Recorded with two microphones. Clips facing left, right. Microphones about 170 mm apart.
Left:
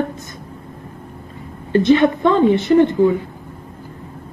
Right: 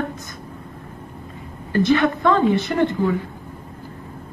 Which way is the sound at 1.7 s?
20° left (ahead or behind).